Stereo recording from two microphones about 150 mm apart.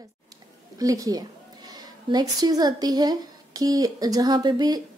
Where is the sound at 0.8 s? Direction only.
25° right (ahead or behind).